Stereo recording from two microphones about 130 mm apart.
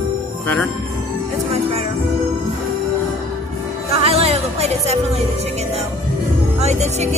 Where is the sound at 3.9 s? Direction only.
50° right (ahead or behind).